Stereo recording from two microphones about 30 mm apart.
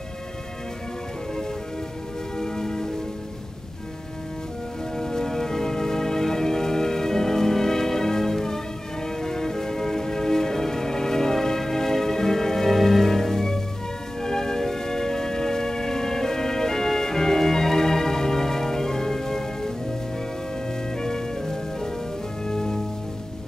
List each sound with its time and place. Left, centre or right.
2.3 s music: centre
4.9 s music: centre
21.0 s music: centre